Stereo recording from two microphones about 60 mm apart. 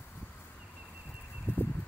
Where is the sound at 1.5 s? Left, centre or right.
Left.